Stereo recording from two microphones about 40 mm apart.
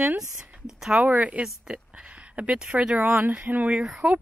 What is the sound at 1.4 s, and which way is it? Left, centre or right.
Speech, centre.